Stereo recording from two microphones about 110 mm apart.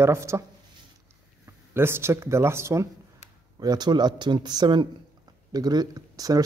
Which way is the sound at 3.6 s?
40° right (ahead or behind).